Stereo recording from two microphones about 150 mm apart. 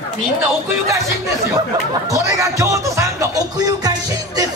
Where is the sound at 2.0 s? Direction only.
20° right (ahead or behind).